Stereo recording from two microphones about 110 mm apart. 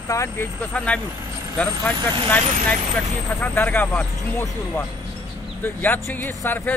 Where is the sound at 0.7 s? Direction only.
10° left (ahead or behind).